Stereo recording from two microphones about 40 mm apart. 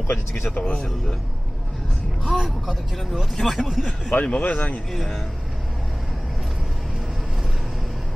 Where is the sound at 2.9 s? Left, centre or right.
Centre.